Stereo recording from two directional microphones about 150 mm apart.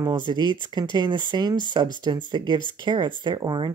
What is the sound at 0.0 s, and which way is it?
Speech, 30° right (ahead or behind).